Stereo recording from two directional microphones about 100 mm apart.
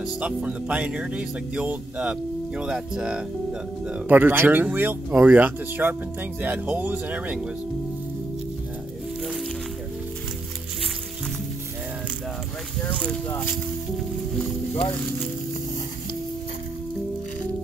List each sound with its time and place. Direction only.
0.2 s speech: 10° right (ahead or behind)
12.8 s speech: 10° left (ahead or behind)